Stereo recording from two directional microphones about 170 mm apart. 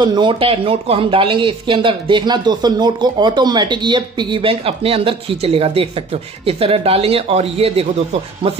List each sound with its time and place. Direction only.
0.0 s speech: 30° right (ahead or behind)